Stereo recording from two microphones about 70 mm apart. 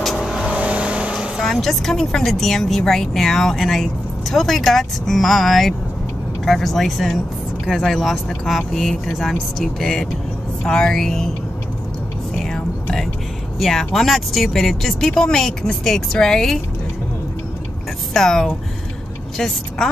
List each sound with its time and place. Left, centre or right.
0.0 s vehicle: centre
0.5 s vehicle: centre
1.4 s speech: centre
12.4 s a sound: centre
13.6 s speech: centre
18.1 s a woman's voice: centre